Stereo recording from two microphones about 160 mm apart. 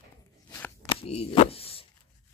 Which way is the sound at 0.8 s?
40° left (ahead or behind).